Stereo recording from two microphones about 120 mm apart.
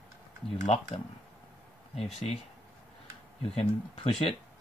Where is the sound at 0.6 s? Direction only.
90° left.